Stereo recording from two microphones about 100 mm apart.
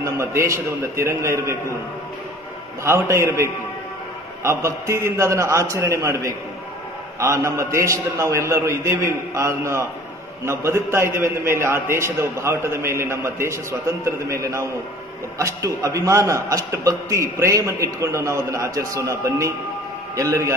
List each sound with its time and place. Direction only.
0.0 s a man's voice: 30° right (ahead or behind)
2.8 s a man's voice: 25° right (ahead or behind)